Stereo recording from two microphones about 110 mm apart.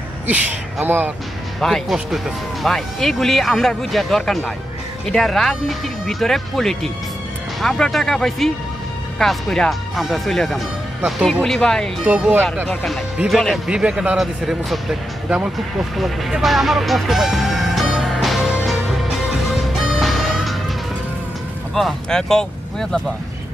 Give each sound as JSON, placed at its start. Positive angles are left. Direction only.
{"t": 0.8, "sound": "speech", "side_deg": -20}
{"t": 1.6, "sound": "speech", "side_deg": 0}
{"t": 16.0, "sound": "music", "side_deg": 0}
{"t": 21.7, "sound": "speech", "side_deg": 5}